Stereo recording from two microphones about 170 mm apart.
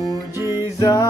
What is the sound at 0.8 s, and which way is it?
Music, 20° left (ahead or behind).